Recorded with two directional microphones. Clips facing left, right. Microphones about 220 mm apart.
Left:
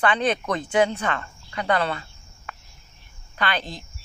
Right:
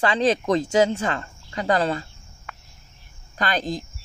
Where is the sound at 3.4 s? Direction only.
40° right (ahead or behind).